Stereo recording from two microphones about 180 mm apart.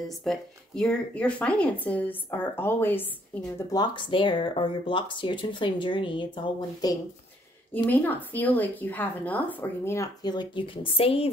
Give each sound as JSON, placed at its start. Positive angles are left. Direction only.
{"t": 0.2, "sound": "a woman's voice", "side_deg": 5}
{"t": 3.5, "sound": "speech", "side_deg": 25}
{"t": 7.7, "sound": "a woman's voice", "side_deg": 10}